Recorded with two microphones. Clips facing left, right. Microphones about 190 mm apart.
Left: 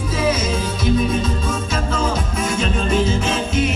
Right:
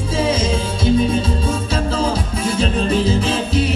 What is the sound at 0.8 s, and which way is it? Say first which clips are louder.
Music: right 3 dB; 30° right (ahead or behind).